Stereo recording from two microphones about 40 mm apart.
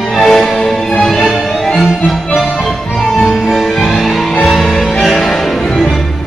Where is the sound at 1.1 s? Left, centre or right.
Centre.